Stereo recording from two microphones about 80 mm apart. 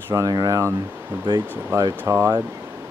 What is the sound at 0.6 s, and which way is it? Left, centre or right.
Speech, right.